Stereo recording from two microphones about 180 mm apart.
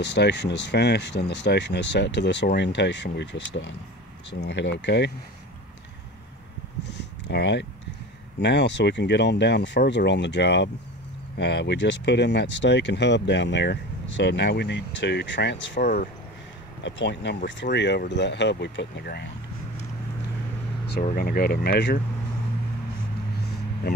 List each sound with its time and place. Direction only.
0.0 s speech: 75° left (ahead or behind)
6.9 s a sound: 70° left (ahead or behind)
8.4 s speech: 70° left (ahead or behind)
16.8 s speech: 75° left (ahead or behind)
21.0 s speech: 50° left (ahead or behind)